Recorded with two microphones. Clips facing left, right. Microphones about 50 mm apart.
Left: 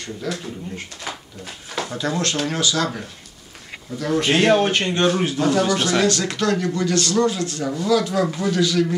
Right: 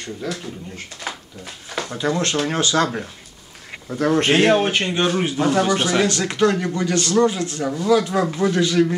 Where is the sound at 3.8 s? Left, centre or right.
Right.